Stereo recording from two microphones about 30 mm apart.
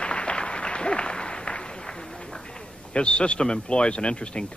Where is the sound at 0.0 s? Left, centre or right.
Left.